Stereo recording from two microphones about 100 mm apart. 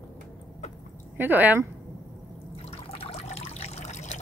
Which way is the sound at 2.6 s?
85° left.